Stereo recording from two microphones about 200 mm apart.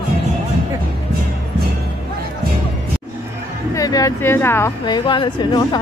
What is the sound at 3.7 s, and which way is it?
Speech, 15° left (ahead or behind).